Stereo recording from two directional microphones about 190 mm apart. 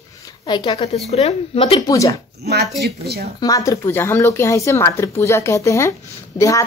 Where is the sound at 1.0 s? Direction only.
35° left (ahead or behind).